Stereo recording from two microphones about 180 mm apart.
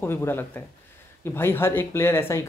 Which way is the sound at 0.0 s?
15° left (ahead or behind).